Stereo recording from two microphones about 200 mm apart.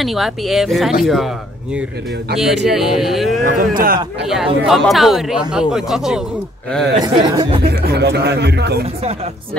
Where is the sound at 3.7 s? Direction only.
45° right (ahead or behind).